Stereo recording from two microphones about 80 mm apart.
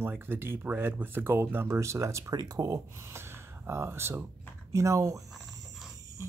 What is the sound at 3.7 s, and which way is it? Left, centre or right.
Speech, right.